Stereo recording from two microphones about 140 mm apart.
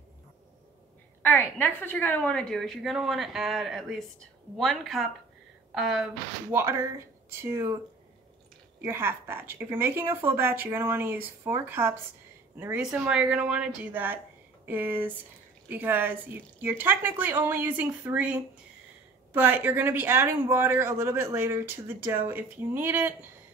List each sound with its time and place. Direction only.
1.2 s a woman's voice: 15° left (ahead or behind)
6.5 s speech: 20° right (ahead or behind)
8.8 s speech: 15° right (ahead or behind)